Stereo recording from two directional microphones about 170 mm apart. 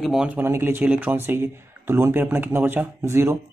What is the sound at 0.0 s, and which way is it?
Speech, 5° right (ahead or behind).